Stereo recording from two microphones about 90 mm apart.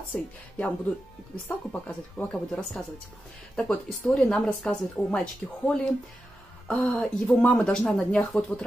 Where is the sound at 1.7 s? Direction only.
15° left (ahead or behind).